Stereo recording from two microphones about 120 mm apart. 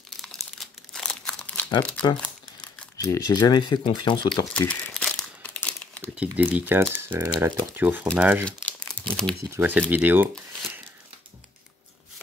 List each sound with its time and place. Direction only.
0.2 s crumpling: 5° left (ahead or behind)
3.0 s speech: 30° left (ahead or behind)
4.6 s crumpling: 10° left (ahead or behind)
6.1 s speech: 10° right (ahead or behind)
8.6 s crumpling: 10° left (ahead or behind)
9.5 s speech: 15° right (ahead or behind)